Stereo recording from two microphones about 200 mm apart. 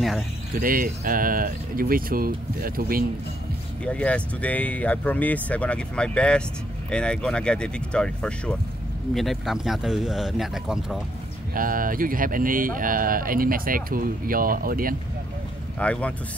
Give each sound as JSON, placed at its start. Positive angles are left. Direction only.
{"t": 0.6, "sound": "speech", "side_deg": -45}
{"t": 3.8, "sound": "speech", "side_deg": 5}
{"t": 11.5, "sound": "speech", "side_deg": -45}
{"t": 15.8, "sound": "speech", "side_deg": 5}